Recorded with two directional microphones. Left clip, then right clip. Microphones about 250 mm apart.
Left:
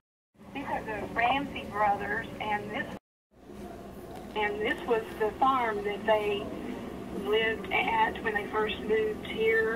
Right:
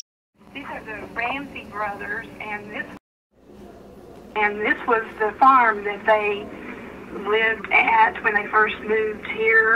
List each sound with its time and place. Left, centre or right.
0.6 s speech: centre
4.3 s speech: right